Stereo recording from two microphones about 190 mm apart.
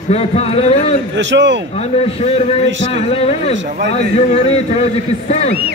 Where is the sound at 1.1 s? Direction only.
70° right (ahead or behind).